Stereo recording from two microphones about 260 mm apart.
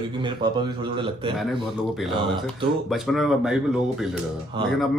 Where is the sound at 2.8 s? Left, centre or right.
Centre.